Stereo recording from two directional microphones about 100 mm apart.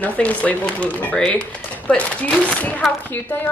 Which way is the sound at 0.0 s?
15° left (ahead or behind).